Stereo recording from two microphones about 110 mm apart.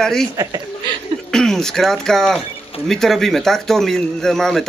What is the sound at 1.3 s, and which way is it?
Speech, 5° left (ahead or behind).